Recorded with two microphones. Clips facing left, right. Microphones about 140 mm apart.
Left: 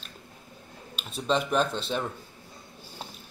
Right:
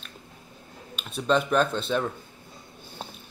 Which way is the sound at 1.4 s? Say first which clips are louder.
Right 3 dB; 5° left (ahead or behind).